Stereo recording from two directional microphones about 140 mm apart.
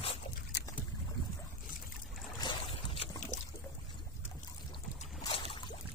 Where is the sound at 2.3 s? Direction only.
35° left (ahead or behind).